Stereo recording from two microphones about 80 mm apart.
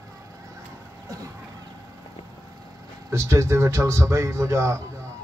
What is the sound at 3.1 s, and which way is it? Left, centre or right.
A man's voice, right.